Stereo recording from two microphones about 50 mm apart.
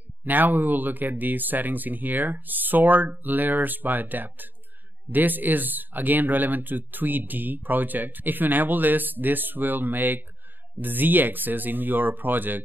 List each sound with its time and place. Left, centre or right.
0.2 s speech: right